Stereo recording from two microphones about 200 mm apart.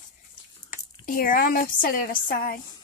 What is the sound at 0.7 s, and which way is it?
A woman's voice, 45° left (ahead or behind).